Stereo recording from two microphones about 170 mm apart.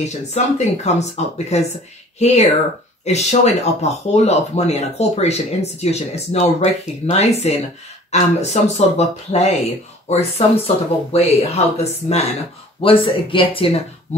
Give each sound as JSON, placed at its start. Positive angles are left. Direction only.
{"t": 0.0, "sound": "speech", "side_deg": 40}